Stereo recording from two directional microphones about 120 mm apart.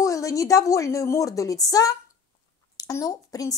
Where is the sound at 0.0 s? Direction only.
25° left (ahead or behind).